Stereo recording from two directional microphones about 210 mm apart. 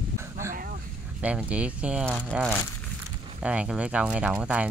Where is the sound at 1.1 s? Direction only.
5° right (ahead or behind).